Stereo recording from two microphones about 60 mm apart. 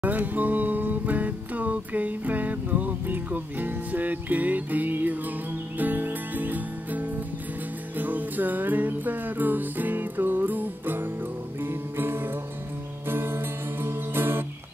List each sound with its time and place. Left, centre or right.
0.0 s music: right